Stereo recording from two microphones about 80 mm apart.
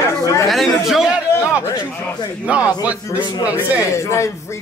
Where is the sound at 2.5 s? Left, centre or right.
Centre.